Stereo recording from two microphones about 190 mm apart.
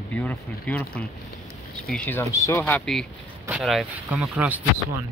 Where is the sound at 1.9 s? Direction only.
10° left (ahead or behind); by 5.1 s 10° right (ahead or behind).